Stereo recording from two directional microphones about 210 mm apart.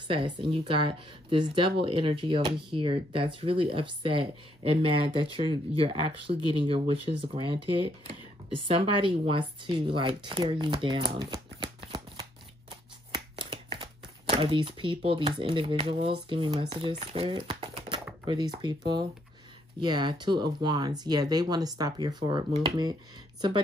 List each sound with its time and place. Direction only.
0.1 s speech: 25° right (ahead or behind)
19.8 s speech: 20° right (ahead or behind)